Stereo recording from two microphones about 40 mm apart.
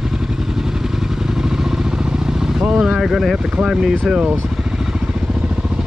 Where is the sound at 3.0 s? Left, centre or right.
Centre.